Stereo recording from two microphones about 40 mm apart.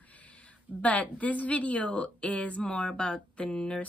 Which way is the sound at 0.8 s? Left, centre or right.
Left.